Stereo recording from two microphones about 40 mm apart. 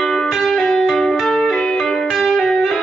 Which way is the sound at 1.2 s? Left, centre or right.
Centre.